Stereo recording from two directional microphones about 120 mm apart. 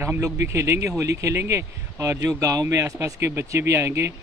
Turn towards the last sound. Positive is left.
turn(degrees=-25)  # may be behind; listen again after turning